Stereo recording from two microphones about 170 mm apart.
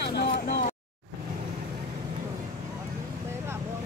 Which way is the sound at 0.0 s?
75° left (ahead or behind).